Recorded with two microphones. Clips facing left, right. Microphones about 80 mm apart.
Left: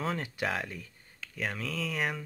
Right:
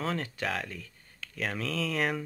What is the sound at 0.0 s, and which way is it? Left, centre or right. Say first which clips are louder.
Speech: even; centre.